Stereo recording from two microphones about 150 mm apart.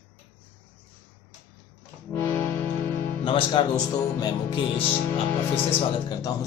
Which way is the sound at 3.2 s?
35° left (ahead or behind).